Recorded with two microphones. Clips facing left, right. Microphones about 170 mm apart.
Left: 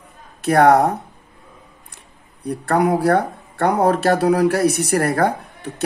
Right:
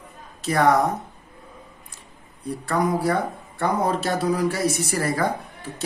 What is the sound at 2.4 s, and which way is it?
Speech, 60° left (ahead or behind).